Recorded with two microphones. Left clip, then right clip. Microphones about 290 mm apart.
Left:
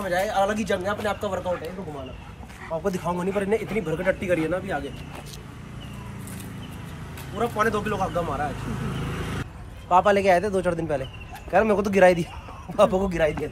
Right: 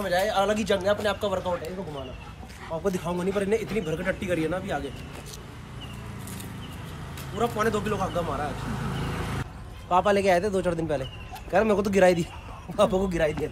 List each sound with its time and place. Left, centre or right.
0.0 s a man's voice: centre
2.7 s a man's voice: centre
7.3 s a man's voice: centre
8.9 s vehicle: right
9.8 s a man's voice: centre